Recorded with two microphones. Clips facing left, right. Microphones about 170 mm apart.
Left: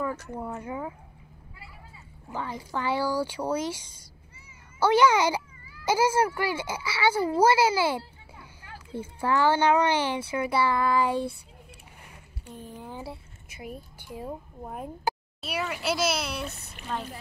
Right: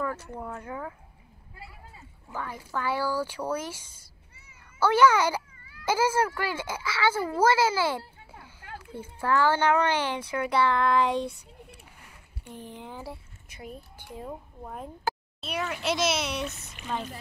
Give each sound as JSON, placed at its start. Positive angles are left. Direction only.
{"t": 0.3, "sound": "speech", "side_deg": 10}
{"t": 2.3, "sound": "speech", "side_deg": 20}
{"t": 8.0, "sound": "children playing", "side_deg": -50}
{"t": 9.2, "sound": "speech", "side_deg": 15}
{"t": 12.7, "sound": "speech", "side_deg": 10}
{"t": 16.4, "sound": "speech", "side_deg": 35}
{"t": 16.8, "sound": "speech", "side_deg": 0}